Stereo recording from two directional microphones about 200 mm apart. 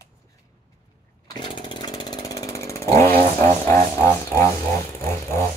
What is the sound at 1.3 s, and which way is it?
Chainsaw, 25° left (ahead or behind).